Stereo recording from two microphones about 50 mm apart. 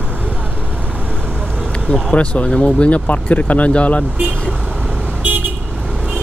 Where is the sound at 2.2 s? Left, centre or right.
Left.